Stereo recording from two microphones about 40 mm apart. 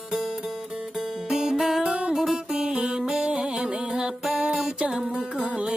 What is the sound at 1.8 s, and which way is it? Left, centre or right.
Music, right.